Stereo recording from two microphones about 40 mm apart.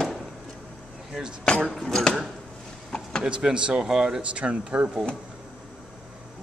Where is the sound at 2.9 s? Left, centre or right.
Centre.